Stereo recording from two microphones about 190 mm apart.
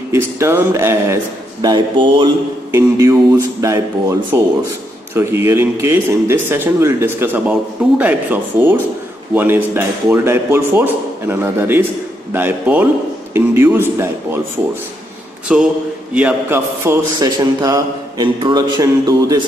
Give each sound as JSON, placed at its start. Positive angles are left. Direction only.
{"t": 0.1, "sound": "a man's voice", "side_deg": -15}
{"t": 1.6, "sound": "a man's voice", "side_deg": -25}
{"t": 15.5, "sound": "mantra", "side_deg": -5}
{"t": 16.2, "sound": "a man's voice", "side_deg": -10}